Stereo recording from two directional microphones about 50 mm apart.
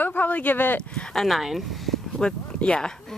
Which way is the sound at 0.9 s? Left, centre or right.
Centre.